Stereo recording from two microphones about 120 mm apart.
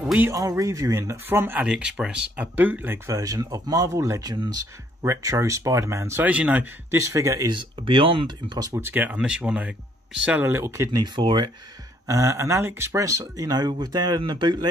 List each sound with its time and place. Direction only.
0.3 s speech: 30° right (ahead or behind)
3.1 s speech: 30° right (ahead or behind)
6.2 s speech: 10° right (ahead or behind); by 8.9 s 25° right (ahead or behind)
8.9 s speech: 10° right (ahead or behind); by 11.5 s 40° right (ahead or behind)
12.1 s speech: 25° right (ahead or behind)